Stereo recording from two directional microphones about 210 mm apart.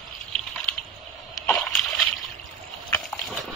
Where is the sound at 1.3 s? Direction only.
Centre (ahead or behind).